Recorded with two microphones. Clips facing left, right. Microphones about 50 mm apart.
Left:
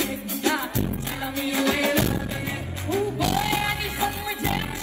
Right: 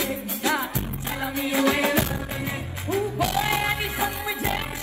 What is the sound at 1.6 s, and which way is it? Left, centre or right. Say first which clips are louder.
Music: right 1 dB; right.